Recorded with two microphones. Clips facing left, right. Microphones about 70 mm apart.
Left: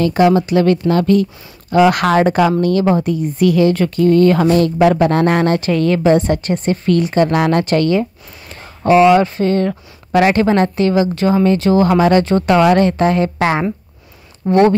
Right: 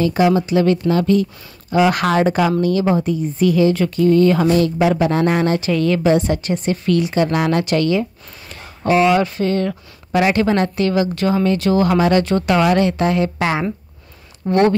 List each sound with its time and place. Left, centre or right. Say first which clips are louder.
0.0 s speech: left 3 dB; left
1.7 s speech: left 4 dB; left
13.4 s speech: left 4 dB; left
14.4 s speech: left 4 dB; left